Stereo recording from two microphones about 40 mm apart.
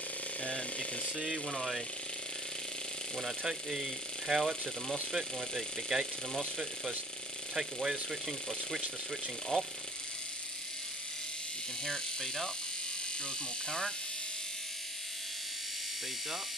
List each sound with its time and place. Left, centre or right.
0.4 s speech: left
1.5 s speech: centre
3.4 s speech: centre
5.9 s speech: centre
11.8 s speech: centre
13.7 s speech: left